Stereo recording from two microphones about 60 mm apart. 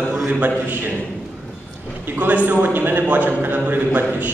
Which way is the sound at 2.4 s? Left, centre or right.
Right.